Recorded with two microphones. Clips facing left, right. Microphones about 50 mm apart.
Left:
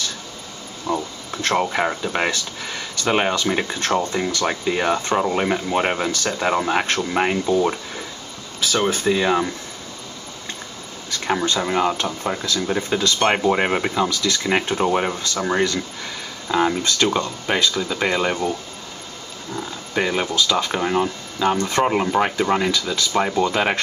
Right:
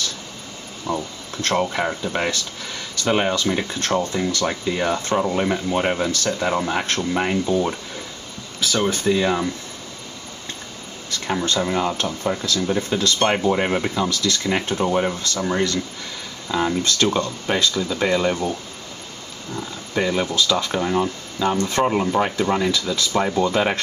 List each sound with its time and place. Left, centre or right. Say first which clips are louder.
0.8 s speech: left 2 dB; centre
8.7 s speech: even; centre
11.2 s speech: left 1 dB; centre
14.8 s speech: left 1 dB; left
19.5 s speech: left 1 dB; centre
21.5 s speech: even; centre
21.8 s speech: left 1 dB; left